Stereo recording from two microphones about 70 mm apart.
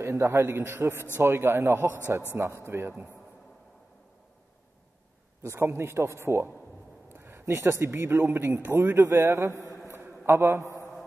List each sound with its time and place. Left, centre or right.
0.0 s speech: right
5.4 s speech: right
7.1 s a sound: right
7.8 s speech: right
9.9 s a sound: right
10.7 s mantra: left